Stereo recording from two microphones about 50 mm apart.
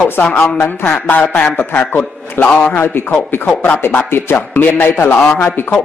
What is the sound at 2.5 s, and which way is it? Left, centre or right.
Speech, left.